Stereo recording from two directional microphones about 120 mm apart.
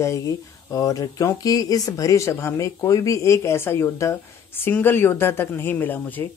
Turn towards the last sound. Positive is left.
turn(degrees=15)  # may be behind; listen again after turning